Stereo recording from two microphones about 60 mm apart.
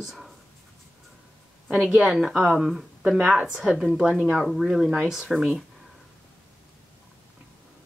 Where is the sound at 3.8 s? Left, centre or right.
Centre.